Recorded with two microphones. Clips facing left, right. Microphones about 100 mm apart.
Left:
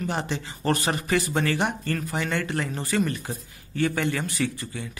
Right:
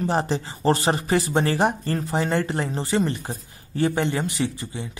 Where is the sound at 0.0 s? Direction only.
35° right (ahead or behind).